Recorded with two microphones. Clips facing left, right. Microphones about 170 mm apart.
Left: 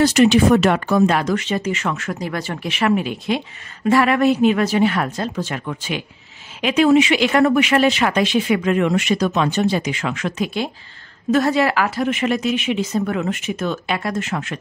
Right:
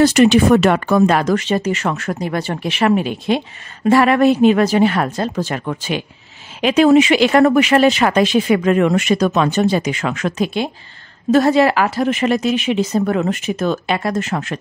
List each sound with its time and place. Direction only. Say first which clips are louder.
0.0 s speech: right 2 dB; 55° right (ahead or behind); by 2.1 s 40° right (ahead or behind)
2.2 s a woman's voice: right 5 dB; 30° right (ahead or behind); by 10.4 s 45° right (ahead or behind)
10.4 s a woman's voice: right 3 dB; 20° right (ahead or behind); by 14.6 s 40° right (ahead or behind)